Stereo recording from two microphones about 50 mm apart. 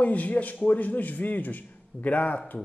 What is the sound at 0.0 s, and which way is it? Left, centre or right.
Speech, left.